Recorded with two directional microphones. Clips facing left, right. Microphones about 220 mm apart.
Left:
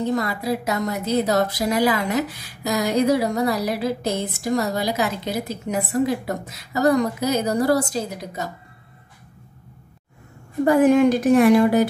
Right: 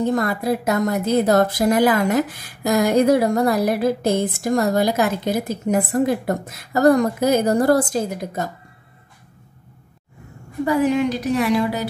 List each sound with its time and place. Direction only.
0.1 s a woman's voice: 50° right (ahead or behind)
10.6 s a woman's voice: 50° left (ahead or behind)